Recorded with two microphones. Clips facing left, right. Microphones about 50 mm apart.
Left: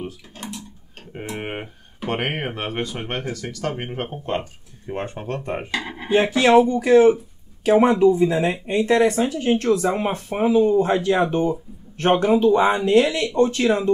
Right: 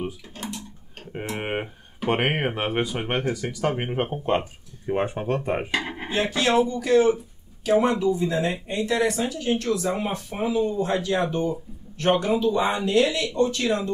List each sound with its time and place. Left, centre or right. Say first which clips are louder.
0.4 s speech: left 1 dB; centre
6.1 s speech: left 7 dB; left
8.5 s speech: left 6 dB; left
12.4 s speech: left 6 dB; left
12.6 s speech: left 5 dB; centre
12.9 s speech: left 4 dB; left